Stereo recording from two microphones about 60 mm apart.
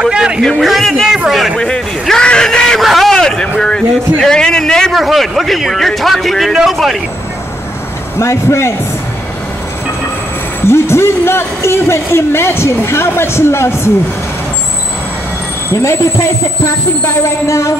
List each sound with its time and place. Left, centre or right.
0.1 s a man's voice: centre
0.6 s a man's voice: centre
1.6 s a man's voice: centre
4.9 s a man's voice: centre
8.2 s a man's voice: left
10.7 s a man's voice: left
15.7 s a man's voice: left